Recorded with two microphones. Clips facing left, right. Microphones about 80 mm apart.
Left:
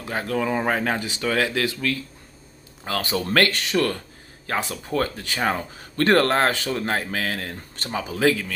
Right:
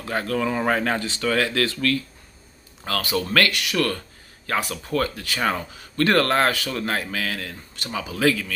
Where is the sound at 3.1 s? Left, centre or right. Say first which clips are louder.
Left 1 dB; left.